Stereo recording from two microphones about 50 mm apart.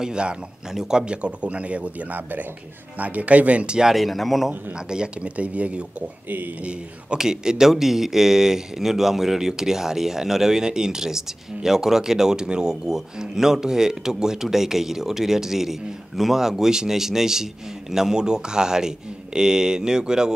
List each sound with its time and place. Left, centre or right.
0.0 s speech: centre
3.9 s speech: centre
4.7 s speech: centre
6.2 s speech: right
6.6 s speech: right
7.2 s speech: centre